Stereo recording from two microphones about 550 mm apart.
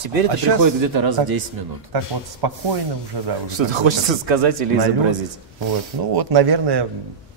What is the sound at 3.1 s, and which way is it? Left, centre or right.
Speech, right.